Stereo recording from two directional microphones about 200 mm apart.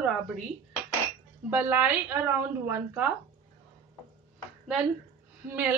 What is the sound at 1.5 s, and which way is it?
Speech, 10° right (ahead or behind).